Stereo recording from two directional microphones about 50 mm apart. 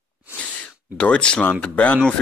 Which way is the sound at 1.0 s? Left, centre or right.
Left.